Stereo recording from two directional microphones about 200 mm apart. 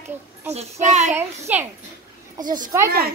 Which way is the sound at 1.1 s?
10° right (ahead or behind).